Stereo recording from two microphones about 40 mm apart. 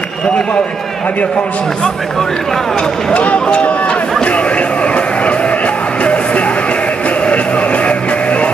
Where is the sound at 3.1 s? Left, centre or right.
Left.